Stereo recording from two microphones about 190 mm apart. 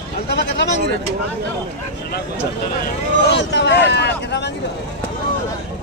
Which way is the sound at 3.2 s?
65° left (ahead or behind).